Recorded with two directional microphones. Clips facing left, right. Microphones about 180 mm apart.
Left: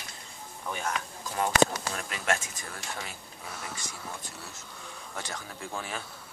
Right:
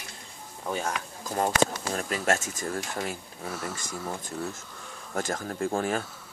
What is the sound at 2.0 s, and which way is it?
Speech, 40° right (ahead or behind).